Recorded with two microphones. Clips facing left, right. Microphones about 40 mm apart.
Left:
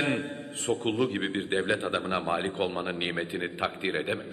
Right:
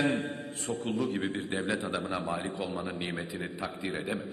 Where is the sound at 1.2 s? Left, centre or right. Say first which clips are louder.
Left 4 dB; left.